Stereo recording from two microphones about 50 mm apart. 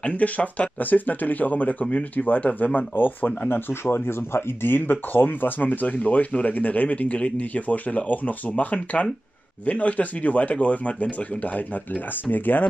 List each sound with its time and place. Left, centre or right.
0.0 s speech: left